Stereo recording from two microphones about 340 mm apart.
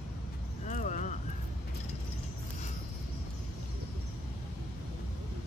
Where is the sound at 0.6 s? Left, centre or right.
Left.